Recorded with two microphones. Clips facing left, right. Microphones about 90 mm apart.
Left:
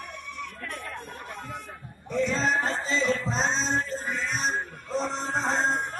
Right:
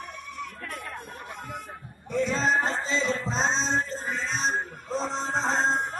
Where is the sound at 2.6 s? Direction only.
Centre (ahead or behind).